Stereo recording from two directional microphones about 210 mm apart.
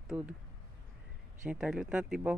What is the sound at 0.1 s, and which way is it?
Speech, 10° right (ahead or behind).